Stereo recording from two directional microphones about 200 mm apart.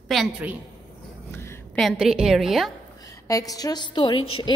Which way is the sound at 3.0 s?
15° left (ahead or behind).